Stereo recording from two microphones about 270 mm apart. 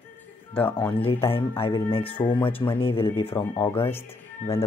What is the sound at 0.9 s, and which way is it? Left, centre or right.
Speech, left.